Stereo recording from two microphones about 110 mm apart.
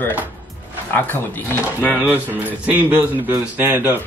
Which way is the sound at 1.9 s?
15° right (ahead or behind).